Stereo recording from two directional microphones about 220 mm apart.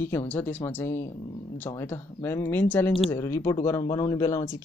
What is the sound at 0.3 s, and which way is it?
Speech, 10° left (ahead or behind).